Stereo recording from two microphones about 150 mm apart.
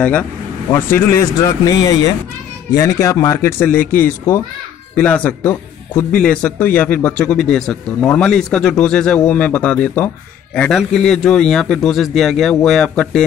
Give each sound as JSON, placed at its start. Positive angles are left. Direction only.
{"t": 0.7, "sound": "speech", "side_deg": 15}